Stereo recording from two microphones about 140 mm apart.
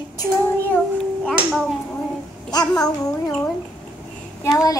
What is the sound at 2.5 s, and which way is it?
Babbling, 30° left (ahead or behind).